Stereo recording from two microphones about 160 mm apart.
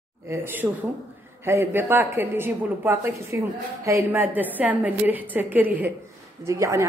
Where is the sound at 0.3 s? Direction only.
15° right (ahead or behind).